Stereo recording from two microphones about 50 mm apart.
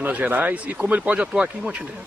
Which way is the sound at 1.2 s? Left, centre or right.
Centre.